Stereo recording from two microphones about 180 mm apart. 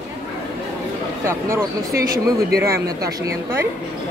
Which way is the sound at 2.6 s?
15° right (ahead or behind).